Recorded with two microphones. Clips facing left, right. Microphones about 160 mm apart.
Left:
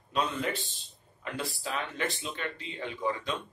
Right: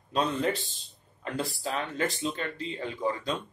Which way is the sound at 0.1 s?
35° right (ahead or behind).